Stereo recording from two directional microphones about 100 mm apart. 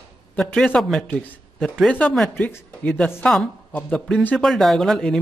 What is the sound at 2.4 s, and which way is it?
Speech, 20° left (ahead or behind).